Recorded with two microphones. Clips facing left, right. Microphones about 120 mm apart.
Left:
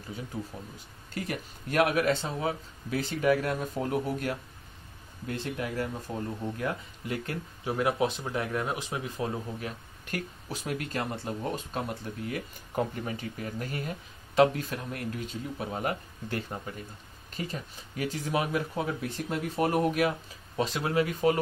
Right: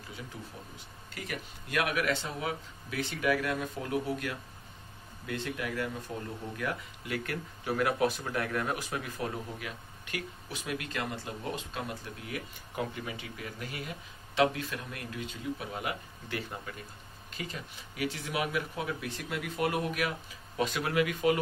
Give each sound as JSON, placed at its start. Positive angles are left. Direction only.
{"t": 0.3, "sound": "speech", "side_deg": 35}
{"t": 9.6, "sound": "speech", "side_deg": 40}